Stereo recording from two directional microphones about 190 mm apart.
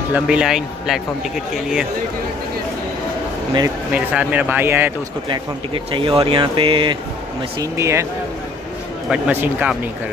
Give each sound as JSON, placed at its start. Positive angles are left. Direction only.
{"t": 0.1, "sound": "speech", "side_deg": -5}
{"t": 3.9, "sound": "speech", "side_deg": -5}
{"t": 5.9, "sound": "speech", "side_deg": -30}
{"t": 7.7, "sound": "speech", "side_deg": -15}
{"t": 9.1, "sound": "speech", "side_deg": -10}